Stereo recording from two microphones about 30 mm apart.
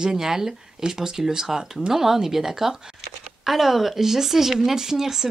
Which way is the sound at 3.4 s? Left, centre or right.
Centre.